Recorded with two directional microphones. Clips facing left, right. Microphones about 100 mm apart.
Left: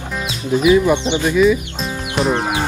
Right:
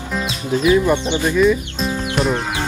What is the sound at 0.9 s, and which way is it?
Speech, 20° left (ahead or behind).